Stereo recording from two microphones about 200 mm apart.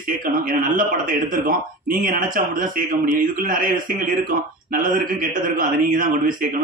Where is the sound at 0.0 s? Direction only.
45° right (ahead or behind).